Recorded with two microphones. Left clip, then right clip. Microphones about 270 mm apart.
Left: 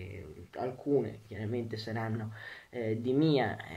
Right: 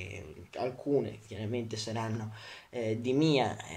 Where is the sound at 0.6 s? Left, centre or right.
Centre.